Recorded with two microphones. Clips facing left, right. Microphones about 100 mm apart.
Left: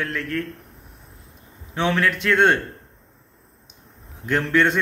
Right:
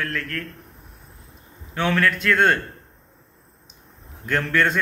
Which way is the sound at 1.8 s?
20° left (ahead or behind).